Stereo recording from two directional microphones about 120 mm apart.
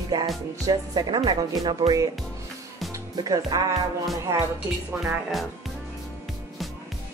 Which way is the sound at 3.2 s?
30° right (ahead or behind).